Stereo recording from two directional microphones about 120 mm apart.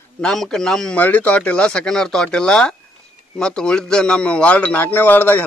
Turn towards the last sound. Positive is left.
turn(degrees=15)  # may be behind; listen again after turning